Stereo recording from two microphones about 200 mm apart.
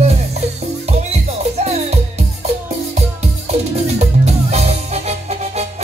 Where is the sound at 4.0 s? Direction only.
30° right (ahead or behind).